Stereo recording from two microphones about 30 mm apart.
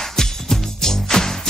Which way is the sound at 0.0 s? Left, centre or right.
Centre.